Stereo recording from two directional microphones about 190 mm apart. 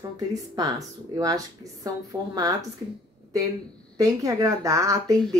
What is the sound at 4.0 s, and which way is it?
A woman's voice, 20° right (ahead or behind).